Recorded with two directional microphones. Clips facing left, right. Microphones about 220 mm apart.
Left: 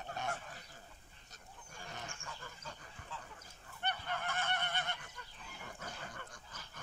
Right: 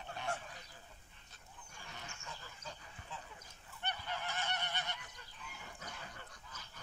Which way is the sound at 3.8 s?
55° left (ahead or behind).